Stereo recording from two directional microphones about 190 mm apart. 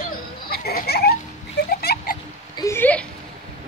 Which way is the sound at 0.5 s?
55° left (ahead or behind).